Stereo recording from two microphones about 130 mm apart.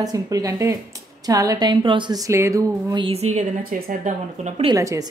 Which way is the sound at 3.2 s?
80° right.